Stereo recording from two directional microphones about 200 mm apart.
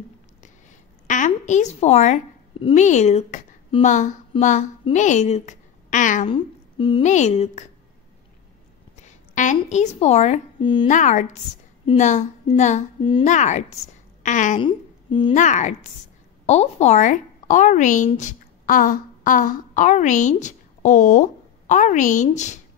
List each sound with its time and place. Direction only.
0.4 s a sound: 40° left (ahead or behind)
6.2 s a woman's voice: 25° left (ahead or behind)
8.9 s speech: 35° left (ahead or behind)
10.9 s a woman's voice: 40° left (ahead or behind)
14.6 s humming: 25° left (ahead or behind)
15.3 s a woman's voice: 40° left (ahead or behind)